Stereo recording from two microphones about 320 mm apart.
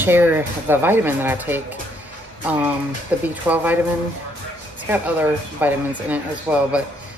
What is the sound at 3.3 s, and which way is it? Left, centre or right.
Speech, centre.